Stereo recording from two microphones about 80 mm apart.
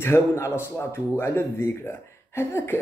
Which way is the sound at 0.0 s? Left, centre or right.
Left.